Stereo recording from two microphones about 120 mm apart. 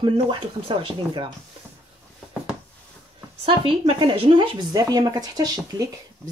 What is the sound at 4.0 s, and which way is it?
Speech, 45° right (ahead or behind).